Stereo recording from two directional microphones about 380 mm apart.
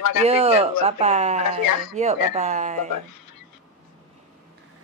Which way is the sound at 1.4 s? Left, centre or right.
Left.